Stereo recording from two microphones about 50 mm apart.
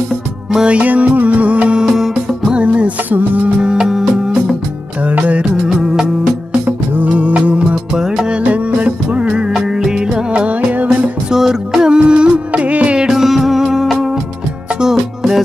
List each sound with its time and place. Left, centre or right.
0.7 s music: right
1.9 s music: centre
2.5 s music: right
3.6 s music: centre
5.0 s music: right; by 8.4 s centre
8.4 s music: right
9.5 s music: centre; by 10.9 s right
11.2 s music: centre; by 13.0 s right
13.0 s music: centre